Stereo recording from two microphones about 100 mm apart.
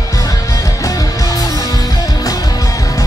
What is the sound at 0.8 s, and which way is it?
Music, 35° left (ahead or behind).